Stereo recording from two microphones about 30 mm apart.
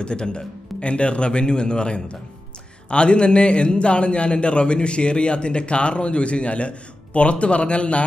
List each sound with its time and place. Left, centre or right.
0.0 s a man's voice: left